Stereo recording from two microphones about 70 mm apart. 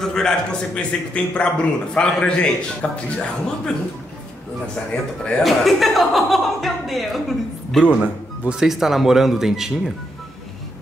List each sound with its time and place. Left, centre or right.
0.0 s a man's voice: centre
5.4 s speech: centre